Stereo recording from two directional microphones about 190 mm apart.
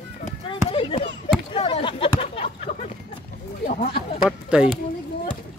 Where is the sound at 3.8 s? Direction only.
30° left (ahead or behind).